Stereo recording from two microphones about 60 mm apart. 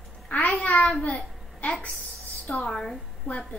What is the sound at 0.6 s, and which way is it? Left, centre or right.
Speech, centre.